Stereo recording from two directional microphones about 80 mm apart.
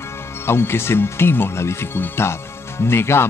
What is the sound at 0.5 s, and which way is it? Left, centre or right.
Speech, left.